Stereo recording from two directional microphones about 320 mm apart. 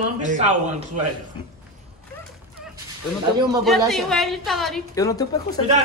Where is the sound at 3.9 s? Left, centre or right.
Centre.